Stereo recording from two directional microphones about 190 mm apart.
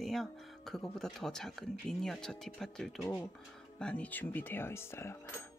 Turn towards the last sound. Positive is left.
turn(degrees=10)  # may be behind; listen again after turning